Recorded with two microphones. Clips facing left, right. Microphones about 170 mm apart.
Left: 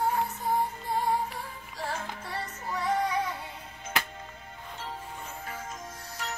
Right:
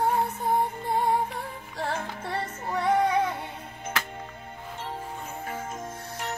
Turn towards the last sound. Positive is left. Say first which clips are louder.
# right 4 dB
turn(degrees=-55)  # may be behind; listen again after turning